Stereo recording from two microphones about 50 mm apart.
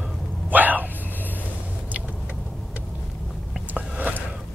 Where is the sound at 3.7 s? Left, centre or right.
Right.